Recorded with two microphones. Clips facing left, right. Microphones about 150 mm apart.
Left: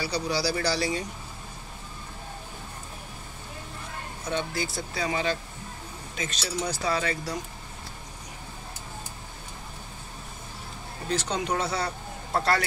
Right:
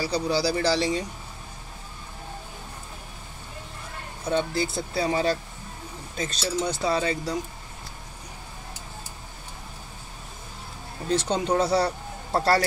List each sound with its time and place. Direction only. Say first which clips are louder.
0.1 s speech: right 4 dB; 25° right (ahead or behind)
4.3 s speech: right 5 dB; 30° right (ahead or behind)
11.1 s speech: right 4 dB; 30° right (ahead or behind)